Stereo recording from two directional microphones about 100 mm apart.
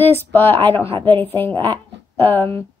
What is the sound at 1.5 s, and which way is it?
Speech, 50° right (ahead or behind).